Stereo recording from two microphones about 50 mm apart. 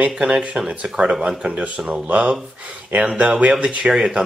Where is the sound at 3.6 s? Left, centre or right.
Right.